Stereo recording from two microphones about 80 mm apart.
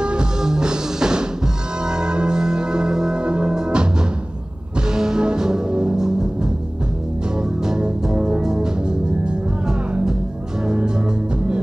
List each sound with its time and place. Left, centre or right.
0.0 s music: centre
4.9 s music: centre
7.6 s music: centre